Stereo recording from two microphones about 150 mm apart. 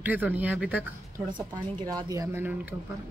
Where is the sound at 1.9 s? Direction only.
25° right (ahead or behind).